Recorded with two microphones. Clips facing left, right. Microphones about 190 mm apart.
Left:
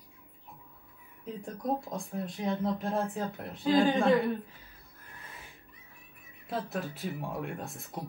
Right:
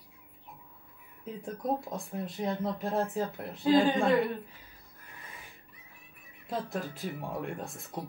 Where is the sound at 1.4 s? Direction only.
Centre (ahead or behind).